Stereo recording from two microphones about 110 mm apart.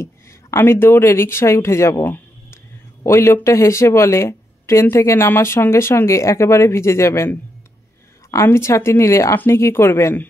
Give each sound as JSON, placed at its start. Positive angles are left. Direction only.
{"t": 0.0, "sound": "speech", "side_deg": 25}
{"t": 8.3, "sound": "speech", "side_deg": 25}